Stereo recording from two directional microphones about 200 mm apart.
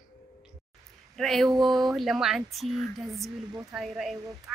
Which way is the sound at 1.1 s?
Centre (ahead or behind).